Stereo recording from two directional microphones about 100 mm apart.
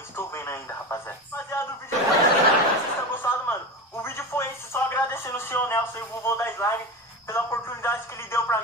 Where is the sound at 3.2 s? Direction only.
25° left (ahead or behind).